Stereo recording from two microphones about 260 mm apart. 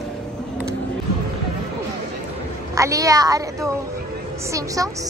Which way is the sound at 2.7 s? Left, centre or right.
Centre.